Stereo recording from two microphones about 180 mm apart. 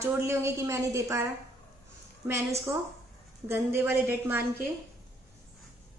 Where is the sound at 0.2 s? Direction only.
15° right (ahead or behind).